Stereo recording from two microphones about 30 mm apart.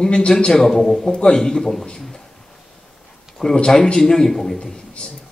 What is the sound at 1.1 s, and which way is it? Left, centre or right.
Speech, left.